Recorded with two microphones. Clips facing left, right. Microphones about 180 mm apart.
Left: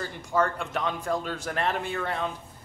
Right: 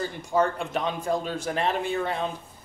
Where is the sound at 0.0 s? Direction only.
15° right (ahead or behind).